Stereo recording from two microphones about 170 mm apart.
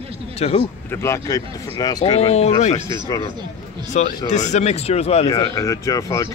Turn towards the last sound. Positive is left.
turn(degrees=20)  # may be behind; listen again after turning